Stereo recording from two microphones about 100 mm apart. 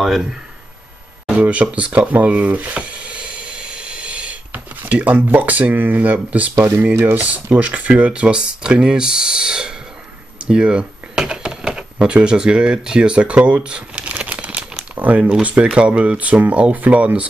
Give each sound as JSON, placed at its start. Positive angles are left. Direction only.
{"t": 0.0, "sound": "speech", "side_deg": -5}
{"t": 10.4, "sound": "a sound", "side_deg": -10}
{"t": 15.0, "sound": "speech", "side_deg": -15}